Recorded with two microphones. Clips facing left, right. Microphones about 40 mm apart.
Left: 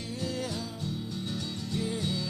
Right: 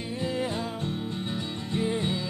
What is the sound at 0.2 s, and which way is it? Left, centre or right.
Music, right.